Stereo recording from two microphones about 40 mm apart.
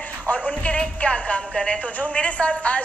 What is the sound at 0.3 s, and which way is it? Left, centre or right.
A woman's voice, left.